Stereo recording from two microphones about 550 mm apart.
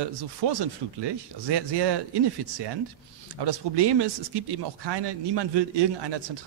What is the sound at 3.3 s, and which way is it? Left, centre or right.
Speech, right.